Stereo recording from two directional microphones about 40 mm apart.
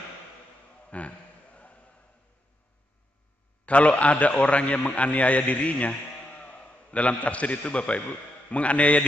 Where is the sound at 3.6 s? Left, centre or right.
Left.